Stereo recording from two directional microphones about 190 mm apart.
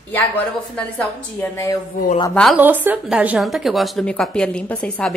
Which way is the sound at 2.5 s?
10° right (ahead or behind).